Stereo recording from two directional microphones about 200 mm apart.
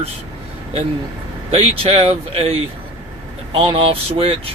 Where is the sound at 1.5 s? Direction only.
30° right (ahead or behind).